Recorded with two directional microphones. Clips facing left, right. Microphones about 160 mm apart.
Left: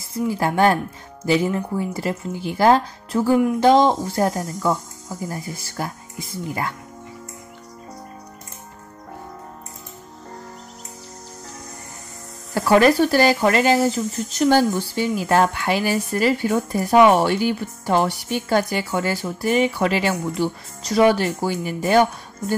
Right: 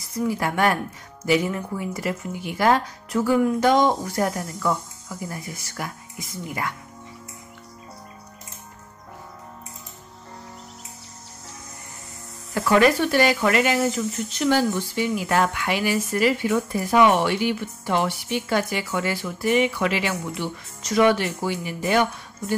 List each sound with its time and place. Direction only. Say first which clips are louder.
0.0 s a woman's voice: left 2 dB; 25° left (ahead or behind)
12.5 s speech: left 3 dB; 35° left (ahead or behind)